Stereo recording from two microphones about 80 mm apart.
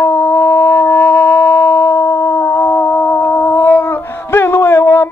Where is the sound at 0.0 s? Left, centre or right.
Left.